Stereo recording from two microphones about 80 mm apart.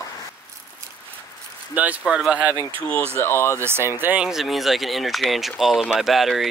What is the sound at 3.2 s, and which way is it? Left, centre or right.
Speech, left.